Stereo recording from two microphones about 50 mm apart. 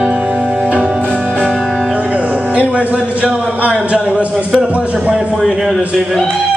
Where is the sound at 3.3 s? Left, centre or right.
Centre.